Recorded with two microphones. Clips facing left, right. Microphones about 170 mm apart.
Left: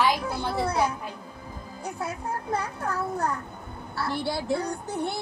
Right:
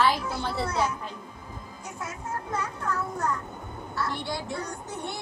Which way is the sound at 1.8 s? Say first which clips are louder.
Left 5 dB; 35° left (ahead or behind).